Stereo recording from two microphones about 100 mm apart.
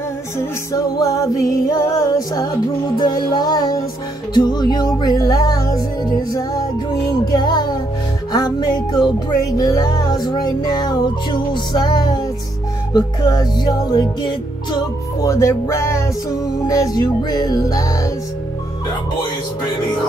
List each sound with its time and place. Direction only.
0.9 s music: 35° left (ahead or behind)
7.2 s music: 45° left (ahead or behind)
15.2 s music: 30° left (ahead or behind)